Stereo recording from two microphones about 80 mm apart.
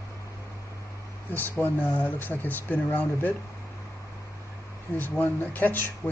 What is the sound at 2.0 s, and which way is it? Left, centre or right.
Speech, left.